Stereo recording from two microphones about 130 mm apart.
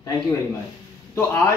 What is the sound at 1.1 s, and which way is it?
Speech, 20° left (ahead or behind).